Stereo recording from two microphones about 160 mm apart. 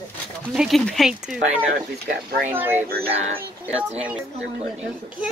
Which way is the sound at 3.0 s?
40° right (ahead or behind).